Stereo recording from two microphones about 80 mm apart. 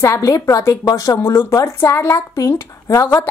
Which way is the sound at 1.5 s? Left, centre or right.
Left.